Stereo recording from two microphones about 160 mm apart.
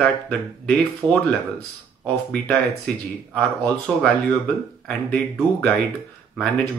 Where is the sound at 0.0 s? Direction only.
5° left (ahead or behind).